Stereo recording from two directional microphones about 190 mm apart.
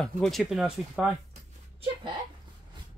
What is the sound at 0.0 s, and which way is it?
Speech, 5° left (ahead or behind).